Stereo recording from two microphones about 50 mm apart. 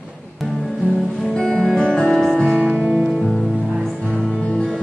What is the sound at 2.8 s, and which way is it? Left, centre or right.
Music, centre.